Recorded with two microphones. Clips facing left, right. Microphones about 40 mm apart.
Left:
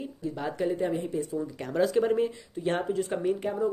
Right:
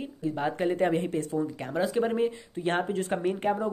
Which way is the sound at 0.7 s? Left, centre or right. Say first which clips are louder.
Right 3 dB; right.